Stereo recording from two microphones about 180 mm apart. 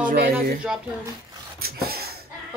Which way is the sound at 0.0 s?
50° right (ahead or behind).